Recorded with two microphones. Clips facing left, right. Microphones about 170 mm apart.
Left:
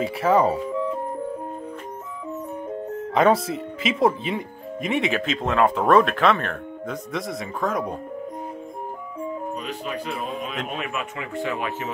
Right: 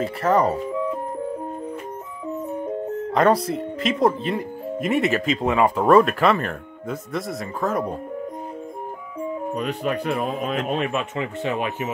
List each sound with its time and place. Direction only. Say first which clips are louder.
0.0 s speech: even; 5° left (ahead or behind)
3.1 s speech: even; centre (ahead or behind)
9.6 s speech: right 6 dB; 55° right (ahead or behind)
10.7 s speech: right 6 dB; 35° right (ahead or behind)